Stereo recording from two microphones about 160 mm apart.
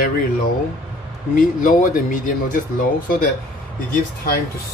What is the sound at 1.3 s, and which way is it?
Speech, 55° left (ahead or behind).